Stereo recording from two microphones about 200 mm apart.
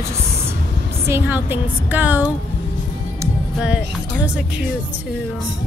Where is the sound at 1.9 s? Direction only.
10° right (ahead or behind).